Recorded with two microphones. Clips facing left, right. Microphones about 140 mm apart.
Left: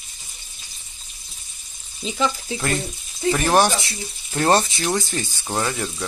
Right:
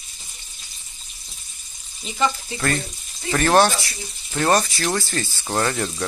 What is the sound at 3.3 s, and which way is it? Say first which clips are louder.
Speech: right 1 dB; 15° left (ahead or behind).